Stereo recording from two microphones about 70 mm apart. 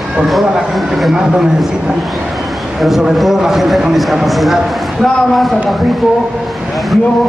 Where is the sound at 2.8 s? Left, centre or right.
Centre.